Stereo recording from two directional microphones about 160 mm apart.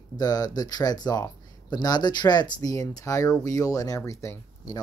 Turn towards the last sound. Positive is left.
turn(degrees=20)  # may be behind; listen again after turning